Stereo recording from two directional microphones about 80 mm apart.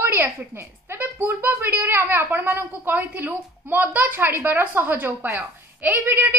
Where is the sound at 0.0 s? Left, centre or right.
Right.